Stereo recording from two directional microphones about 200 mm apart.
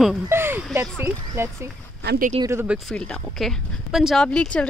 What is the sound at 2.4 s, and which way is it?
Speech, 15° right (ahead or behind).